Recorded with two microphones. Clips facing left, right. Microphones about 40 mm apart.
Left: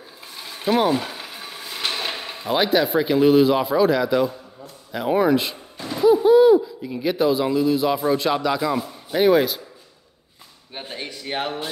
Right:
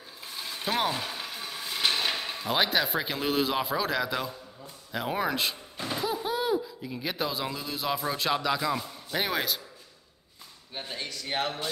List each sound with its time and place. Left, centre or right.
0.3 s mechanisms: centre
2.0 s speech: centre
10.7 s a man's voice: left